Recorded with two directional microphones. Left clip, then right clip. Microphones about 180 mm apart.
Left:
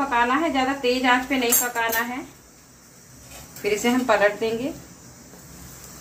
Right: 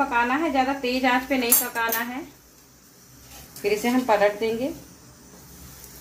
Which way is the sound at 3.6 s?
35° right (ahead or behind).